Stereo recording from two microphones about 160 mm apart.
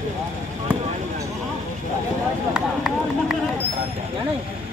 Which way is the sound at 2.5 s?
5° right (ahead or behind).